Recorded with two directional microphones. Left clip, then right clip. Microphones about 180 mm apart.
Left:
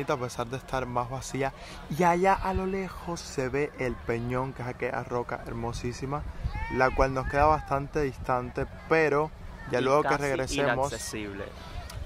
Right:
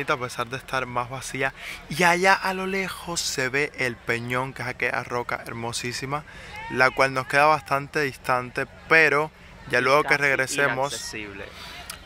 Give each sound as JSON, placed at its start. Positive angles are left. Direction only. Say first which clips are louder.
{"t": 0.0, "sound": "speech", "louder": "right 4 dB", "side_deg": 5}
{"t": 5.1, "sound": "speech", "louder": "right 4 dB", "side_deg": -15}
{"t": 5.6, "sound": "speech", "louder": "right 5 dB", "side_deg": 0}
{"t": 11.1, "sound": "speech", "louder": "right 2 dB", "side_deg": 55}